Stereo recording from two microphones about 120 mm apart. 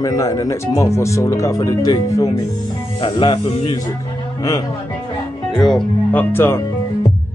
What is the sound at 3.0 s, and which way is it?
Speech, 45° left (ahead or behind).